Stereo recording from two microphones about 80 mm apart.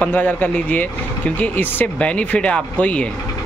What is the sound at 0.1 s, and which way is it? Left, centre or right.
Speech, left.